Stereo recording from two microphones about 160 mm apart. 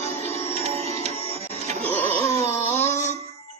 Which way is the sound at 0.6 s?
40° right (ahead or behind).